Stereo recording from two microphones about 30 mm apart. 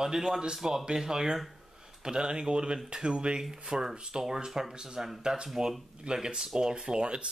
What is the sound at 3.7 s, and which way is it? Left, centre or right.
Speech, right.